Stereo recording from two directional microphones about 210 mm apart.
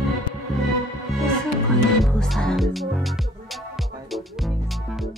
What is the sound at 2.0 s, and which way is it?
Music, centre (ahead or behind).